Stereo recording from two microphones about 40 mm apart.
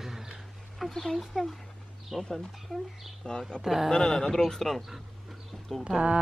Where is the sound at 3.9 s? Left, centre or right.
Centre.